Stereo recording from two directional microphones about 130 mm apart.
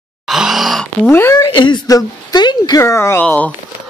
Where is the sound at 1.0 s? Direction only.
20° left (ahead or behind).